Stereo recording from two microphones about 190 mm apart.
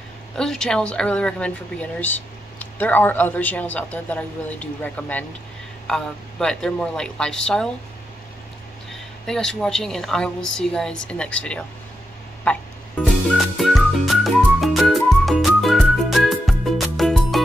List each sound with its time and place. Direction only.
0.4 s a woman's voice: 5° left (ahead or behind)
8.9 s a woman's voice: centre (ahead or behind)
12.5 s music: 10° left (ahead or behind)